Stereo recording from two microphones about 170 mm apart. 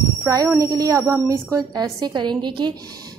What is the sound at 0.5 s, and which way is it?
A woman's voice, 20° right (ahead or behind).